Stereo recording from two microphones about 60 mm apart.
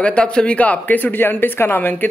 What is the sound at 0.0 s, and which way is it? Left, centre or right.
Speech, centre.